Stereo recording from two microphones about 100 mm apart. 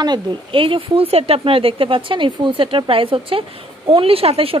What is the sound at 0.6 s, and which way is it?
Speech, 60° right (ahead or behind).